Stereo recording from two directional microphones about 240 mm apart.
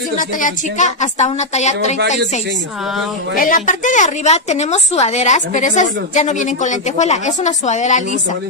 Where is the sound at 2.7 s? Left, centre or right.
Centre.